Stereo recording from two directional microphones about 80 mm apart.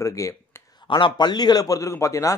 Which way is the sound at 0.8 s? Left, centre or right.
Left.